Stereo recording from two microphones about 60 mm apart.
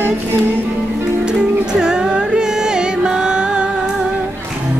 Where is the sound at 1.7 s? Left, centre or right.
Centre.